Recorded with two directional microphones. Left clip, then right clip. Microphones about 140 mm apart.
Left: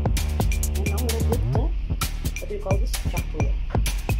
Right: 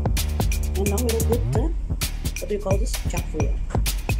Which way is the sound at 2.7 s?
20° right (ahead or behind).